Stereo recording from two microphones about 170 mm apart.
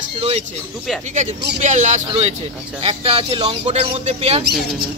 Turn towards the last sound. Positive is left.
turn(degrees=-40)  # may be behind; listen again after turning